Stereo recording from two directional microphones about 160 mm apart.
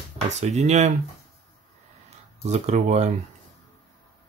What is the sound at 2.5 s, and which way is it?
Speech, 45° right (ahead or behind).